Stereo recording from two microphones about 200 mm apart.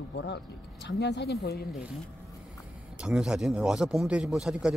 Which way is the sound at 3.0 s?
5° right (ahead or behind).